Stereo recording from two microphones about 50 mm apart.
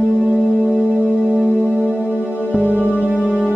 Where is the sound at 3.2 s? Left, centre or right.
Centre.